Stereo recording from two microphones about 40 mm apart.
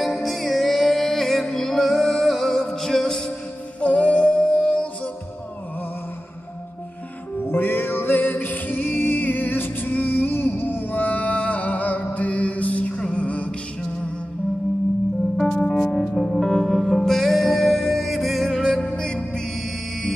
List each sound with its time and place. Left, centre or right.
0.0 s music: centre
3.8 s music: left
7.4 s music: left
10.9 s music: left
12.9 s music: left
15.3 s music: centre